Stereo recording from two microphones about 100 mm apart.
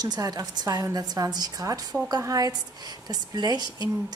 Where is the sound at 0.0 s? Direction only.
40° right (ahead or behind).